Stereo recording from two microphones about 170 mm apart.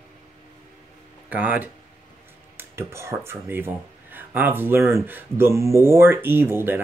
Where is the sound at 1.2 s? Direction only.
10° right (ahead or behind).